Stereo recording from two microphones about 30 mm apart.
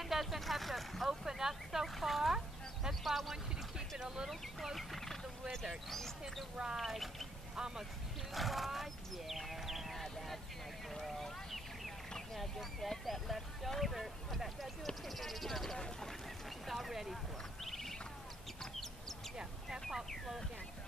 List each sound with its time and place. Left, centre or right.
0.0 s a sound: centre
0.4 s vehicle: centre
1.0 s speech: centre
6.5 s speech: right
6.8 s speech: centre
7.5 s speech: right
8.3 s speech: centre
9.9 s speech: centre
10.9 s a sound: centre
12.4 s speech: centre
16.4 s a sound: centre